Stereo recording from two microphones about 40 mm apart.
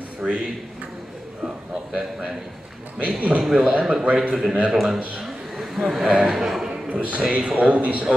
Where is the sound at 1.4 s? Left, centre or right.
Centre.